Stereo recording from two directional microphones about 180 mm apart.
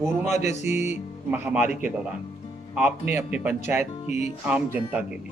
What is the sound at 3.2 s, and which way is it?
Speech, 10° right (ahead or behind).